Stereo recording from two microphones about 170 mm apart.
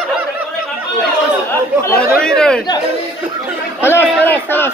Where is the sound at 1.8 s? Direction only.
10° left (ahead or behind).